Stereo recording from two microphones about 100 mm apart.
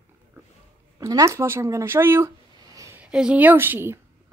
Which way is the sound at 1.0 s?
30° right (ahead or behind).